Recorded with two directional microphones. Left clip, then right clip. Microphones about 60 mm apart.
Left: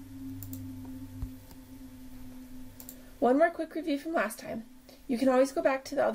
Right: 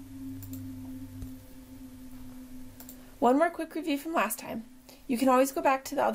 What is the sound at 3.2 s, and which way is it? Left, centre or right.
A woman's voice, right.